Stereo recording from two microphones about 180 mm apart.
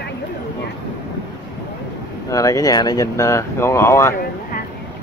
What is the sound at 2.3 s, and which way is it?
Speech, 20° left (ahead or behind).